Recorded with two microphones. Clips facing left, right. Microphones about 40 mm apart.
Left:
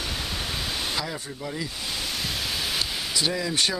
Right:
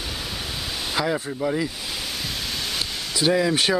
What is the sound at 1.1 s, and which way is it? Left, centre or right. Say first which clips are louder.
Speech: right 9 dB; right.